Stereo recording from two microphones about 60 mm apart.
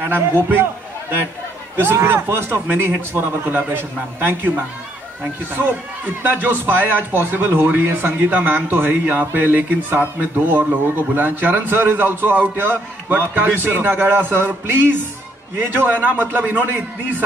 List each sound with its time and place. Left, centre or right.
0.0 s a man's voice: right
1.8 s a man's voice: right
5.5 s a man's voice: right